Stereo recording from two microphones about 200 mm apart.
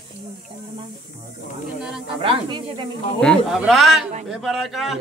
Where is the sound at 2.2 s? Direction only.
25° right (ahead or behind).